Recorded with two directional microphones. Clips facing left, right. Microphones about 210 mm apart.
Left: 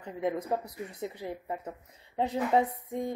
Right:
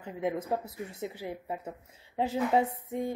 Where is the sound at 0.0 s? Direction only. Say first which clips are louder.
Left 1 dB; 5° right (ahead or behind).